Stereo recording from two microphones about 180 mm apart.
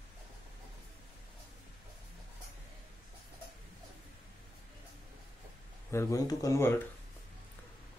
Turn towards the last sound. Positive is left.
turn(degrees=15)  # may be behind; listen again after turning